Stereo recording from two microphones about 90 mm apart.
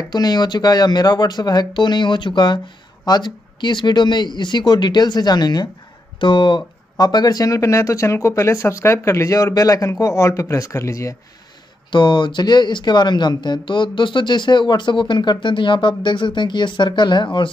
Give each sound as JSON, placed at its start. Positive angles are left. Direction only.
{"t": 0.1, "sound": "speech", "side_deg": 50}
{"t": 6.1, "sound": "speech", "side_deg": 60}
{"t": 11.9, "sound": "speech", "side_deg": 60}